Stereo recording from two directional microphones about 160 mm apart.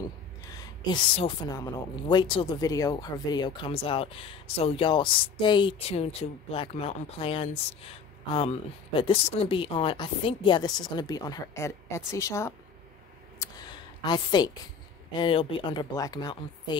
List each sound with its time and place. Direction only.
0.5 s a woman's voice: 25° left (ahead or behind)
13.4 s a sound: 25° left (ahead or behind)
15.1 s a woman's voice: 30° left (ahead or behind)